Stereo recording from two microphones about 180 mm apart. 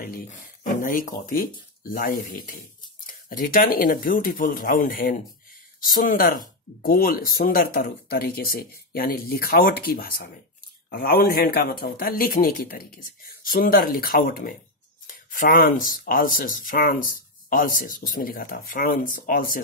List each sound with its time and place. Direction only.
0.0 s a man's voice: 50° left (ahead or behind)